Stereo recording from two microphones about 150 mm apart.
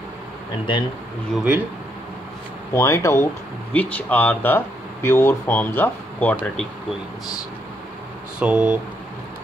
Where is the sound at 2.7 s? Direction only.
20° left (ahead or behind).